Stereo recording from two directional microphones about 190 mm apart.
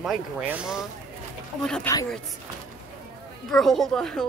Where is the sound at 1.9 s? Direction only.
10° left (ahead or behind).